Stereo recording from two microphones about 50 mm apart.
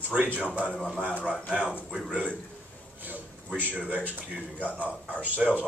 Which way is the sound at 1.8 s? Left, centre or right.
Centre.